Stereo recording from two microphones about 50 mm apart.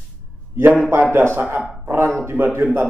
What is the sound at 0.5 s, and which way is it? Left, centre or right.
A man's voice, right.